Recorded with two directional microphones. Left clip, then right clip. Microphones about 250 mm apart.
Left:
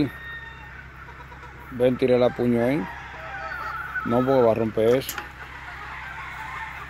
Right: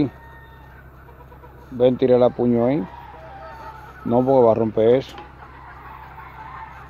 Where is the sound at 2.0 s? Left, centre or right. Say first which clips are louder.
Right 4 dB; centre.